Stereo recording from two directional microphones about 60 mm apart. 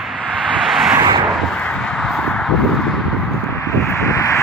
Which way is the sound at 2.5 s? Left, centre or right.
Centre.